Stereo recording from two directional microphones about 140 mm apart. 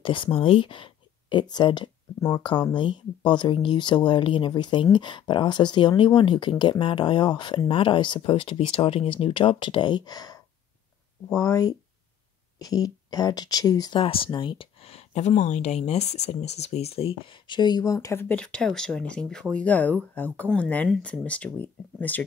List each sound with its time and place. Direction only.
0.0 s speech: 35° left (ahead or behind)
2.1 s speech: 20° left (ahead or behind)
2.4 s speech: 35° left (ahead or behind)
13.9 s speech: 40° left (ahead or behind); by 18.2 s 25° left (ahead or behind)
18.3 s speech: 5° left (ahead or behind)